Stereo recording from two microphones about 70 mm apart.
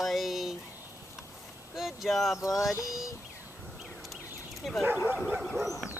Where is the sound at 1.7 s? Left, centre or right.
Centre.